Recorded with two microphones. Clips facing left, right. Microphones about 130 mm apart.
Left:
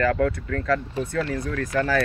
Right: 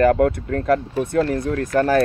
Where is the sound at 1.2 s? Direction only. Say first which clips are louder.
Right 8 dB; 50° right (ahead or behind).